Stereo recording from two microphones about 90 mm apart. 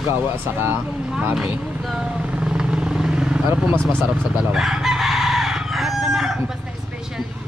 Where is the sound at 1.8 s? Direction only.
10° right (ahead or behind).